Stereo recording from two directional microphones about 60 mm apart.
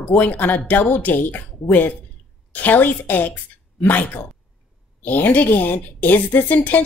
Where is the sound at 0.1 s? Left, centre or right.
Left.